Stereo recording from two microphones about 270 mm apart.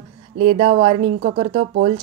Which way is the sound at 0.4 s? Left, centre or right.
Right.